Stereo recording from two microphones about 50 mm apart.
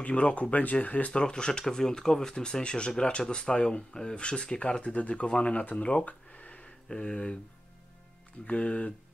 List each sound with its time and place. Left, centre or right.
0.0 s speech: left
1.1 s speech: centre
6.0 s a sound: left
6.9 s speech: centre
8.5 s speech: left